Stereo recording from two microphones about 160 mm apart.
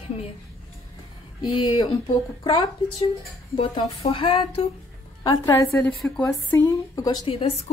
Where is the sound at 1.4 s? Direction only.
25° left (ahead or behind).